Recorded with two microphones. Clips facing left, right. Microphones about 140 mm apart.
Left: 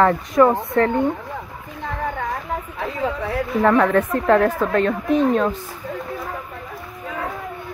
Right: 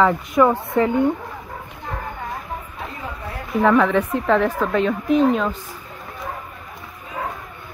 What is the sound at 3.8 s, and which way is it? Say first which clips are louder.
Speech: left 1 dB; centre (ahead or behind).